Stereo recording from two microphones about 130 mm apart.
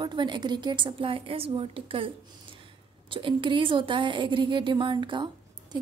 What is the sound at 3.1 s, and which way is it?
A woman's voice, 40° right (ahead or behind).